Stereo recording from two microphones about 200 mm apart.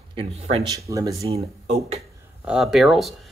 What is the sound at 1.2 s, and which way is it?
Speech, 30° right (ahead or behind).